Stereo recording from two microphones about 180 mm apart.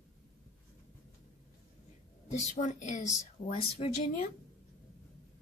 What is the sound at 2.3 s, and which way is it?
Speech, 40° left (ahead or behind).